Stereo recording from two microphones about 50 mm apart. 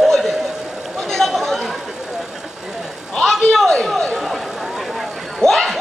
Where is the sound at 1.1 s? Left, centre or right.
Centre.